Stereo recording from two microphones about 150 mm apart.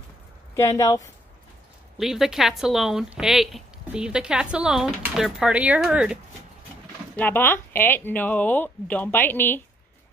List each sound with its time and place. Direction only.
0.6 s speech: 20° left (ahead or behind)
2.0 s a woman's voice: centre (ahead or behind)
7.2 s speech: 15° left (ahead or behind)